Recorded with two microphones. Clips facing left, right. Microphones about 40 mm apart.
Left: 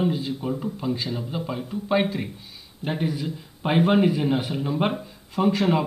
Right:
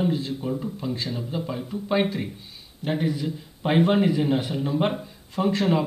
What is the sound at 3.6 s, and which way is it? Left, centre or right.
Speech, left.